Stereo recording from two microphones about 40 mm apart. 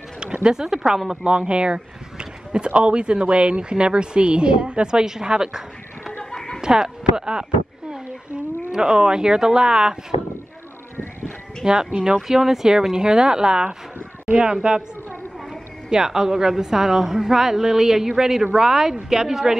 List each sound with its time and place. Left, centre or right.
0.2 s a sound: right
0.6 s a woman's voice: centre
1.2 s speech: right
5.0 s a woman's voice: centre
6.3 s chicken: centre
6.6 s speech: centre
8.7 s speech: centre
11.6 s speech: centre
15.9 s a woman's voice: centre